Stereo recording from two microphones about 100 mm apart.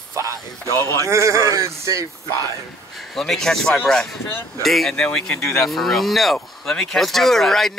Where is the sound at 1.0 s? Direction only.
30° right (ahead or behind).